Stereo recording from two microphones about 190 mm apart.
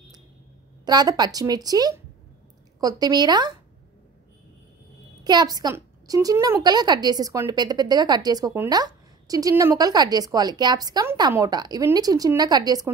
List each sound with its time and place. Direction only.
0.8 s a woman's voice: 20° right (ahead or behind)
5.2 s a woman's voice: 20° right (ahead or behind)